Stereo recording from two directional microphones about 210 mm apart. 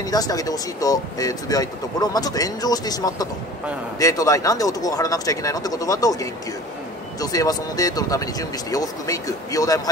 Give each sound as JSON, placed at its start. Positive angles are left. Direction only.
{"t": 0.0, "sound": "speech", "side_deg": 15}